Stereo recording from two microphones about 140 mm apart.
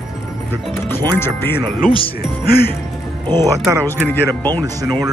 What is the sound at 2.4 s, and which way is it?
Speech, 90° left.